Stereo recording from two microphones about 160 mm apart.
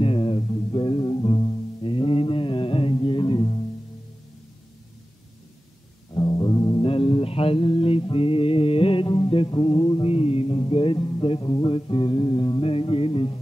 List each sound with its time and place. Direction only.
0.0 s music: 35° left (ahead or behind)
6.1 s music: 25° left (ahead or behind)